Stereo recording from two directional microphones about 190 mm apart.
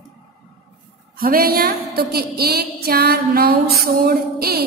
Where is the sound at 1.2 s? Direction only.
50° right (ahead or behind).